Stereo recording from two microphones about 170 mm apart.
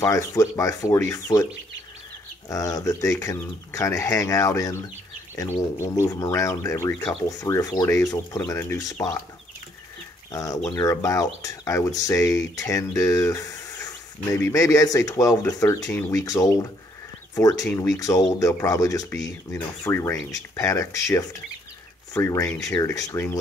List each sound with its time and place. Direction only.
0.0 s speech: 20° left (ahead or behind)
2.5 s speech: 20° left (ahead or behind)
10.3 s speech: 20° left (ahead or behind)